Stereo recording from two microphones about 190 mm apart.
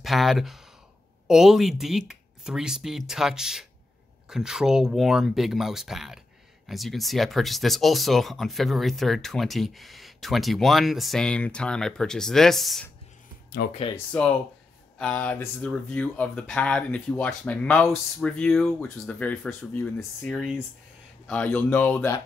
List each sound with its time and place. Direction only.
0.0 s speech: centre (ahead or behind)
13.6 s speech: 60° left (ahead or behind)
14.1 s speech: 10° left (ahead or behind)